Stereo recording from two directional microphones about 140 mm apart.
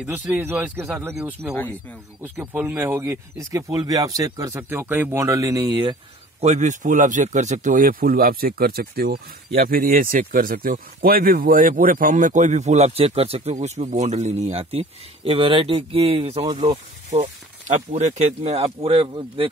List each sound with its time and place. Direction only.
0.0 s speech: 10° right (ahead or behind)
1.5 s speech: 15° left (ahead or behind)
2.2 s speech: 15° right (ahead or behind); by 5.9 s 30° right (ahead or behind)
6.4 s a man's voice: 55° right (ahead or behind); by 19.5 s 40° right (ahead or behind)